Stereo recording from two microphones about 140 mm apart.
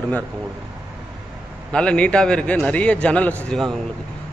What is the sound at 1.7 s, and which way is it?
A man's voice, 10° left (ahead or behind).